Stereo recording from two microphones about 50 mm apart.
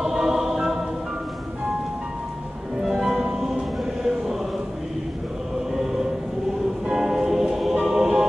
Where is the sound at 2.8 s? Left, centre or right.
Centre.